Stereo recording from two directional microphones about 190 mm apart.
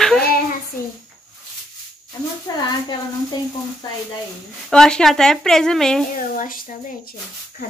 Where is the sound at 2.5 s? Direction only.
20° left (ahead or behind).